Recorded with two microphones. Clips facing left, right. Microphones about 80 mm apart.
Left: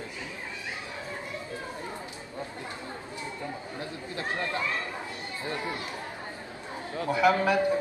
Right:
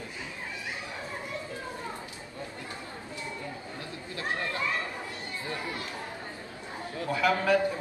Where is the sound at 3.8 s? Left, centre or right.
Left.